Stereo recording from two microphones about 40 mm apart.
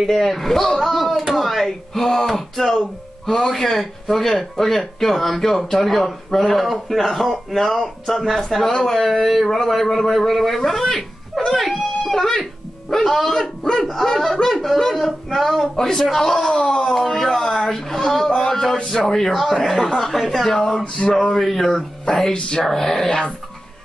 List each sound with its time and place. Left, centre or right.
0.0 s a man's voice: centre
15.7 s speech: centre
20.5 s speech: centre
21.4 s speech: centre
21.7 s speech: centre